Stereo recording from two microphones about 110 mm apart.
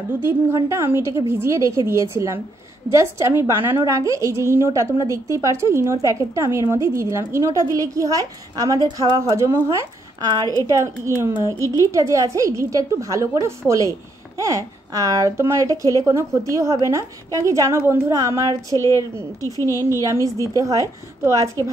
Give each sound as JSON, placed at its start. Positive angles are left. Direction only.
{"t": 0.2, "sound": "a woman's voice", "side_deg": -20}
{"t": 18.7, "sound": "a woman's voice", "side_deg": 30}
{"t": 20.0, "sound": "a woman's voice", "side_deg": -30}